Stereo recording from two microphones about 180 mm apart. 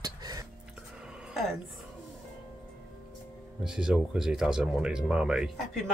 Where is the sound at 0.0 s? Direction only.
20° right (ahead or behind).